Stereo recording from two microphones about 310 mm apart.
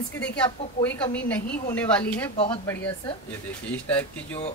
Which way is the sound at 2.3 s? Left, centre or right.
Centre.